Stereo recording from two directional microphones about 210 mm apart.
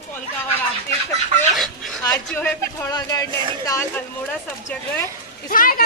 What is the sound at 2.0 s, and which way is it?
Speech, 10° left (ahead or behind).